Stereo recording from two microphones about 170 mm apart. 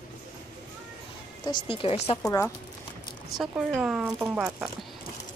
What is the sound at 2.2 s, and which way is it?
Speech, 20° left (ahead or behind).